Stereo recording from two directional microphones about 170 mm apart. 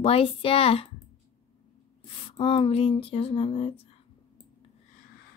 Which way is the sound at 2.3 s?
30° left (ahead or behind).